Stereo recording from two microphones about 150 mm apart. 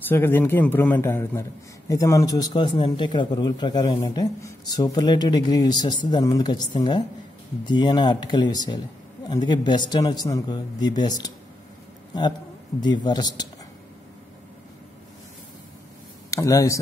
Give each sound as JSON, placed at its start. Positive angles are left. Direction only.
{"t": 0.1, "sound": "a man's voice", "side_deg": 15}
{"t": 16.3, "sound": "speech", "side_deg": 20}